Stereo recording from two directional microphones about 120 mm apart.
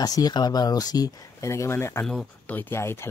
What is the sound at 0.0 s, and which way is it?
Speech, 30° left (ahead or behind).